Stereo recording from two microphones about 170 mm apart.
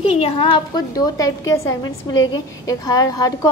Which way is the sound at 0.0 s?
35° left (ahead or behind).